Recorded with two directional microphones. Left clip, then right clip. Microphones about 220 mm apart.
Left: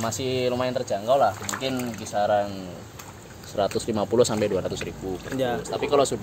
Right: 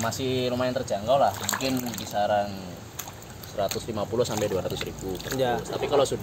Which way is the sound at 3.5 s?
35° left (ahead or behind).